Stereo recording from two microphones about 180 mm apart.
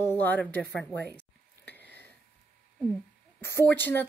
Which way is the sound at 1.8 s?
65° right (ahead or behind).